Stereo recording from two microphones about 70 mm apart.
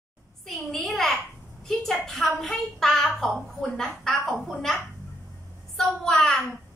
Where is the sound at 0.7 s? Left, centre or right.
Centre.